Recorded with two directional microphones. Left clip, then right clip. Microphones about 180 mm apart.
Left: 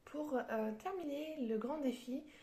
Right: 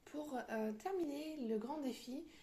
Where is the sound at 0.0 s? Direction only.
40° right (ahead or behind).